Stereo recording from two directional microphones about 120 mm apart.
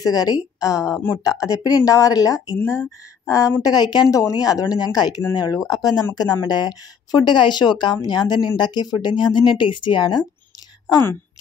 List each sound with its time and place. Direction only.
0.0 s a woman's voice: 30° left (ahead or behind)
10.9 s a woman's voice: 25° left (ahead or behind)